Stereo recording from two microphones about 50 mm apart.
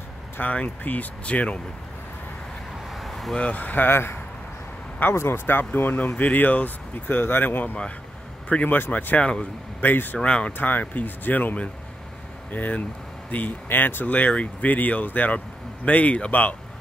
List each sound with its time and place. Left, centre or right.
0.4 s speech: left
2.9 s vehicle: centre
3.3 s speech: left
3.9 s speech: left
5.5 s speech: left
8.5 s speech: left
10.1 s speech: left
10.6 s speech: left